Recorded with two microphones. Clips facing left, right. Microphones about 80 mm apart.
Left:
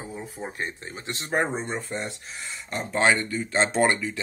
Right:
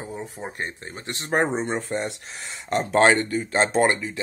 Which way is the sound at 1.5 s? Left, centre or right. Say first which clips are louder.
Right 4 dB; right.